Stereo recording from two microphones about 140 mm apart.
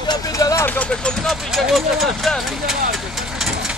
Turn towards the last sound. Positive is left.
turn(degrees=-5)  # may be behind; listen again after turning